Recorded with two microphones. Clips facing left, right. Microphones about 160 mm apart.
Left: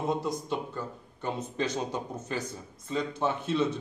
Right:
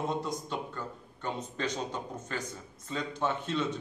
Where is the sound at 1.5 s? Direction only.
10° left (ahead or behind).